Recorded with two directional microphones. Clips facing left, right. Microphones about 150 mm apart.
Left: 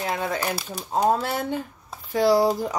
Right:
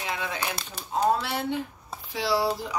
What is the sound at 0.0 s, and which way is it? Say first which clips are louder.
Speech: left 5 dB; 45° left (ahead or behind).